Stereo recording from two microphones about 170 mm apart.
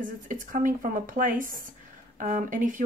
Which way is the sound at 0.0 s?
50° right (ahead or behind).